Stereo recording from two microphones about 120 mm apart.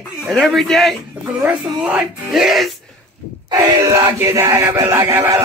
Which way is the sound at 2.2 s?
5° right (ahead or behind).